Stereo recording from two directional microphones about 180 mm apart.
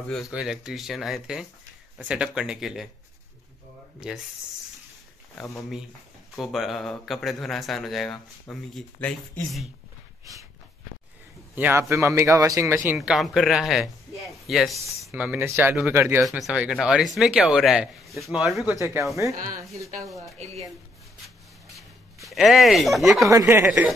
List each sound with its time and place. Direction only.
0.1 s speech: 5° right (ahead or behind)
4.0 s speech: 5° right (ahead or behind)
6.3 s speech: centre (ahead or behind)
11.5 s a man's voice: 10° right (ahead or behind)
16.2 s speech: centre (ahead or behind)
19.3 s speech: 50° right (ahead or behind)
20.4 s speech: 35° right (ahead or behind)
21.6 s a sound: centre (ahead or behind)
23.2 s a man's voice: 15° right (ahead or behind)
23.6 s speech: 5° right (ahead or behind)